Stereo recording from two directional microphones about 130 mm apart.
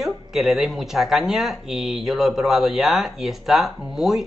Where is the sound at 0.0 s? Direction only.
Centre (ahead or behind).